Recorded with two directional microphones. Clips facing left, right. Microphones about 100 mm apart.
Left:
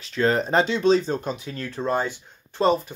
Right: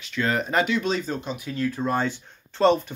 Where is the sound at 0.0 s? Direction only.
35° left (ahead or behind).